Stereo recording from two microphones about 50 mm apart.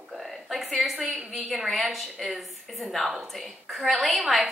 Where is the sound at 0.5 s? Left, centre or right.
Centre.